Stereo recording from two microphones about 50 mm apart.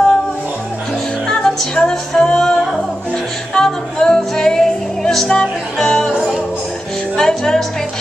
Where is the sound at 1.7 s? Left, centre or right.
Centre.